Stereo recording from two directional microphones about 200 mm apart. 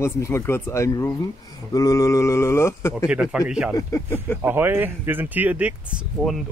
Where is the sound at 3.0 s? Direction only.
5° right (ahead or behind).